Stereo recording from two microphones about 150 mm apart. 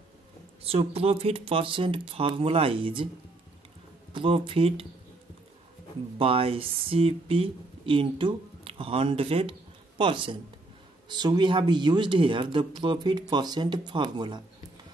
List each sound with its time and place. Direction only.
0.7 s speech: 40° right (ahead or behind)
4.1 s speech: 35° right (ahead or behind)
6.1 s speech: 40° right (ahead or behind)